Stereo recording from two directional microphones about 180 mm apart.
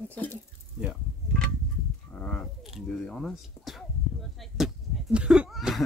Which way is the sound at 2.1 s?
5° left (ahead or behind).